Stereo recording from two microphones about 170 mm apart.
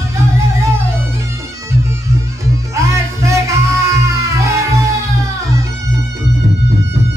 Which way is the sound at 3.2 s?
15° right (ahead or behind).